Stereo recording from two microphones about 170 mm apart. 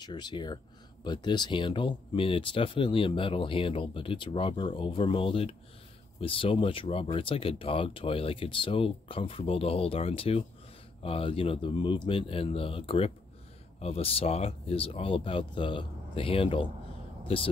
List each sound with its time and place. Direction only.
0.0 s speech: 25° left (ahead or behind)